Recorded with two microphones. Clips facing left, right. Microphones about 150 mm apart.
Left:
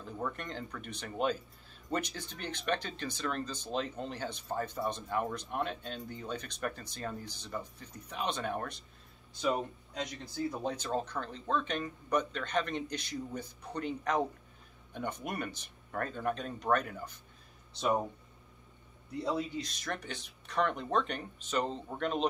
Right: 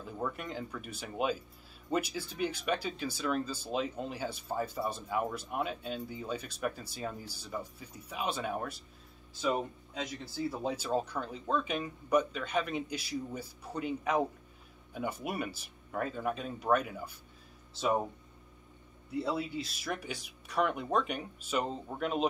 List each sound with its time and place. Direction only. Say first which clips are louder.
0.0 s speech: right 1 dB; 5° right (ahead or behind)
19.0 s speech: even; 5° right (ahead or behind)